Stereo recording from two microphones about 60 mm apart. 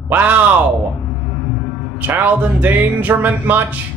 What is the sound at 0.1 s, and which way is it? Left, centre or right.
Speech, right.